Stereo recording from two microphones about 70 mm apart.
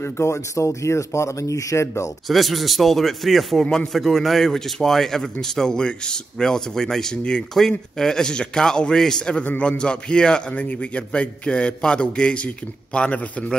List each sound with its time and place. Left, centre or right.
0.0 s speech: left
2.2 s speech: centre
3.6 s a man's voice: centre